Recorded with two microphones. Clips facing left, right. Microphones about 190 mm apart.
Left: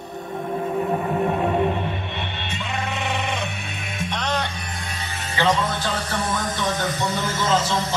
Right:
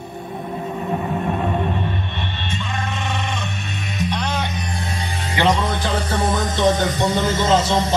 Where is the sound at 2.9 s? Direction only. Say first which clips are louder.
Even; 15° left (ahead or behind).